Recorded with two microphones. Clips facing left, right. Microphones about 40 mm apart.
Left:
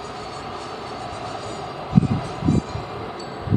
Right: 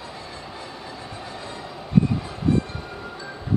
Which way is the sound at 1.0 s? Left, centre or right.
Centre.